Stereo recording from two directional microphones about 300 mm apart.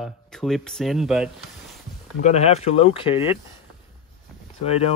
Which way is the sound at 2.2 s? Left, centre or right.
Left.